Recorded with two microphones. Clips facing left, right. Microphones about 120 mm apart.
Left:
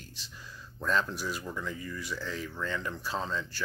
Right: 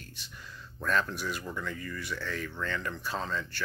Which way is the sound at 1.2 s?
15° left (ahead or behind).